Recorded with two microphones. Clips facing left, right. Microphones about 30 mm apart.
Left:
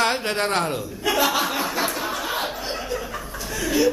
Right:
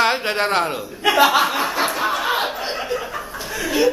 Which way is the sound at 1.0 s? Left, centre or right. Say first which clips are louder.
Right 6 dB; right.